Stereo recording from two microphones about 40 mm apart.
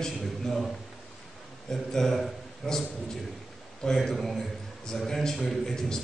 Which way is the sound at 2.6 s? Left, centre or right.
Centre.